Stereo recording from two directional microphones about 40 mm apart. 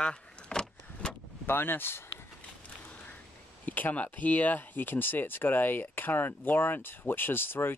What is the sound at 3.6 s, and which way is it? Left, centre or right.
Speech, left.